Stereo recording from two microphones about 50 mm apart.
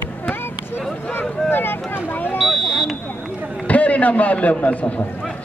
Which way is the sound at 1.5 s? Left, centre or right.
Left.